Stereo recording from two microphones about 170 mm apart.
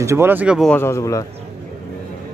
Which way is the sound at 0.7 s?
15° left (ahead or behind).